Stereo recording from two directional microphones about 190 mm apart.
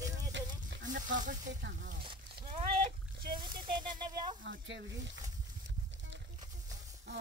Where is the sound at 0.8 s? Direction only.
45° right (ahead or behind).